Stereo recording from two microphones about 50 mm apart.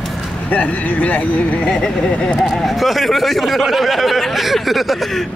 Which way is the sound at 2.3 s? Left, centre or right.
Centre.